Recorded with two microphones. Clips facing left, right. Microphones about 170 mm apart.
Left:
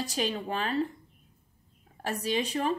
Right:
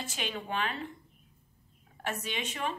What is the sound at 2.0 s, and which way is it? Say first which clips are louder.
Speech: left 6 dB; 35° left (ahead or behind).